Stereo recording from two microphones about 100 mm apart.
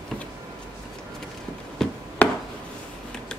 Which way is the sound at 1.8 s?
5° left (ahead or behind).